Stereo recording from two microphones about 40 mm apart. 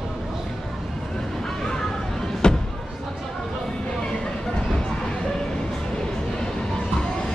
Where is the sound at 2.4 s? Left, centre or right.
Left.